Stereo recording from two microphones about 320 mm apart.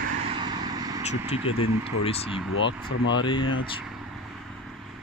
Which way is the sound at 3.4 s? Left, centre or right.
Left.